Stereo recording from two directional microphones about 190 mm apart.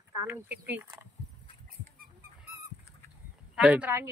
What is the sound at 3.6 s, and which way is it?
Speech, 5° right (ahead or behind).